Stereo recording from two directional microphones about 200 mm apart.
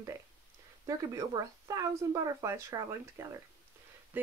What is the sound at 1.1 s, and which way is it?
Speech, 15° right (ahead or behind).